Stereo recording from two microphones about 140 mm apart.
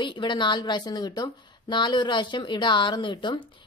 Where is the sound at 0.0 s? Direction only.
35° left (ahead or behind).